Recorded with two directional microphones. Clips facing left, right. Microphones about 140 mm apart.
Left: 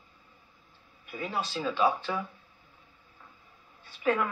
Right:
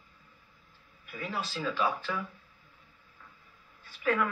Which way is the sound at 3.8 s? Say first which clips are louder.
Left 1 dB; 25° left (ahead or behind).